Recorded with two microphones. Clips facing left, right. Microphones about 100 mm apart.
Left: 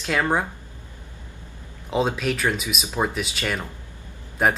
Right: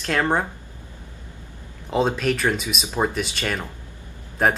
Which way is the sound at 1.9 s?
Centre (ahead or behind).